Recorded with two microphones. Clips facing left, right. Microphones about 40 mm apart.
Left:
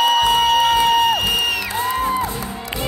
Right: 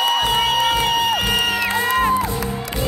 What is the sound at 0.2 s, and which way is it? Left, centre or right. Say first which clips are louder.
Music: left 3 dB; centre.